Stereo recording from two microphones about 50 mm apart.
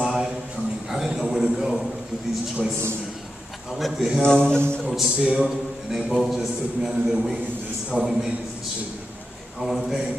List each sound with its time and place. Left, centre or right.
0.0 s a sound: centre
3.7 s a man's voice: centre
4.2 s speech: centre
4.9 s a man's voice: centre
9.8 s a man's voice: centre